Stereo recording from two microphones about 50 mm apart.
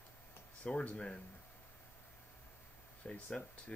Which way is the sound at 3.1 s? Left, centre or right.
Left.